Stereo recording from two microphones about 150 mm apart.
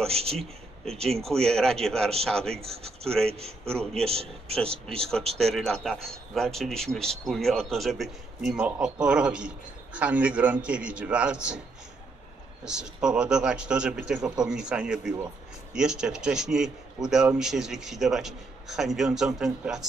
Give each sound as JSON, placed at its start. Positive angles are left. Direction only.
{"t": 0.1, "sound": "speech", "side_deg": -40}
{"t": 1.1, "sound": "a man's voice", "side_deg": 5}
{"t": 2.5, "sound": "a man's voice", "side_deg": -40}
{"t": 5.4, "sound": "a man's voice", "side_deg": 0}
{"t": 12.6, "sound": "a man's voice", "side_deg": -5}